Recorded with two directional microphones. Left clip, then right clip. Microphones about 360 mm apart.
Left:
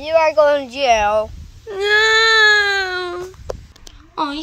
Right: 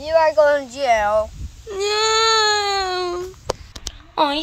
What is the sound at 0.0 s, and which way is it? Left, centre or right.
Speech, left.